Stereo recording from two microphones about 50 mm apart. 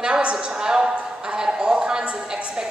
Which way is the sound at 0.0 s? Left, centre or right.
Right.